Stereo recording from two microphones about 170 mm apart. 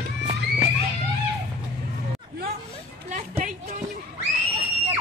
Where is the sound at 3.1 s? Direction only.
45° right (ahead or behind).